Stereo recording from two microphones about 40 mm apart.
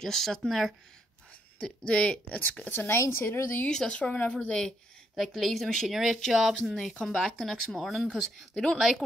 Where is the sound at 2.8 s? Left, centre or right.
Left.